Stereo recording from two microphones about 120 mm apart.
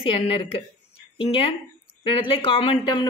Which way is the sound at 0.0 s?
50° left (ahead or behind).